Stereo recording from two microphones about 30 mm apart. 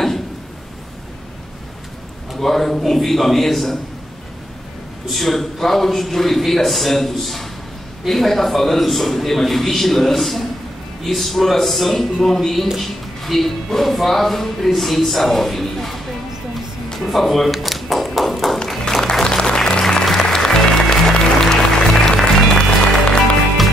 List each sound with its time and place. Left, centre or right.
2.3 s a man's voice: centre
5.0 s speech: centre
17.0 s a sound: centre
18.7 s music: centre
19.2 s applause: left
19.8 s applause: centre
20.2 s music: centre